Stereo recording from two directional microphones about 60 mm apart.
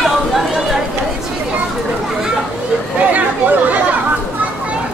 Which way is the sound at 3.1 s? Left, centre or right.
Right.